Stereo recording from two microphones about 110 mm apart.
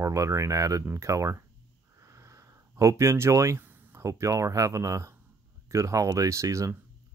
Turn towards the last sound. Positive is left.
turn(degrees=-30)  # may be behind; listen again after turning